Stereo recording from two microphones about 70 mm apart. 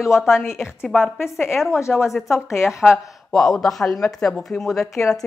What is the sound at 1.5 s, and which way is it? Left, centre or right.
A woman's voice, centre.